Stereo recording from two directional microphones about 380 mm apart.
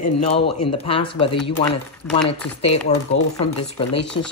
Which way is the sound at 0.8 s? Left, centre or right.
Centre.